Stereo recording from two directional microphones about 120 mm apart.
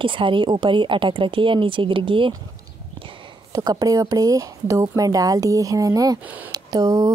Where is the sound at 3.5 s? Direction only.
30° right (ahead or behind).